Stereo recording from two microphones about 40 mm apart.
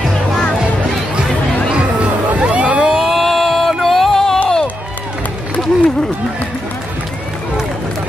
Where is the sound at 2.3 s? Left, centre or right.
Right.